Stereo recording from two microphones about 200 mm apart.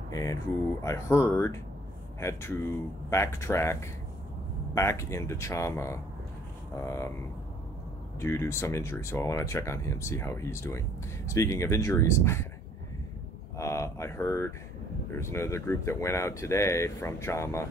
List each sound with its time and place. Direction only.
0.1 s speech: 15° left (ahead or behind)
8.2 s speech: 15° left (ahead or behind)
13.6 s speech: 15° left (ahead or behind)